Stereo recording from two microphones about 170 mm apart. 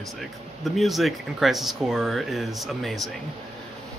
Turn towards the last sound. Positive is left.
turn(degrees=0)  # may be behind; listen again after turning